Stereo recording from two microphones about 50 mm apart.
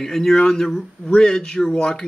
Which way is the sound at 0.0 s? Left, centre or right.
Centre.